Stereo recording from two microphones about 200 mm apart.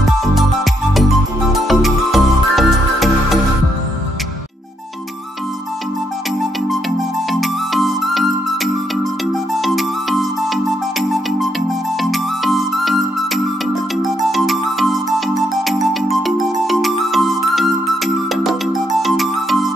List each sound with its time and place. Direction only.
0.0 s music: centre (ahead or behind)
1.5 s music: centre (ahead or behind)
7.3 s music: centre (ahead or behind)
14.0 s music: centre (ahead or behind)